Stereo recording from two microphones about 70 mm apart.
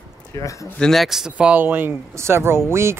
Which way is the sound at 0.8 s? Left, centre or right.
Centre.